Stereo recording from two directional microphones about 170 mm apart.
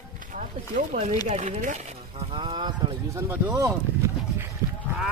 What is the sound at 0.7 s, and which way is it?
Speech, 45° right (ahead or behind).